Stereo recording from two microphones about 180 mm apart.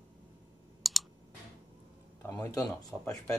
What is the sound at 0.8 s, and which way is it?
Clicking, centre (ahead or behind).